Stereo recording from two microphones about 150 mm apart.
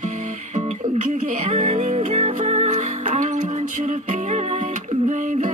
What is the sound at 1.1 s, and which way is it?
Music, 60° right (ahead or behind).